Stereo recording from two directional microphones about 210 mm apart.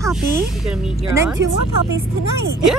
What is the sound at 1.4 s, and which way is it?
Speech, 55° right (ahead or behind).